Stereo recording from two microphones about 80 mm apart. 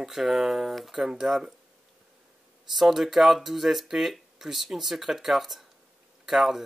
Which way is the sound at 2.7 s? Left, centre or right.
Centre.